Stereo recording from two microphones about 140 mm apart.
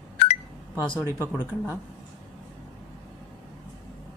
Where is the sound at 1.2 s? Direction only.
15° right (ahead or behind).